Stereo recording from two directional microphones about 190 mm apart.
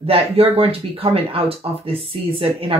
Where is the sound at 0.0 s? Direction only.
30° right (ahead or behind).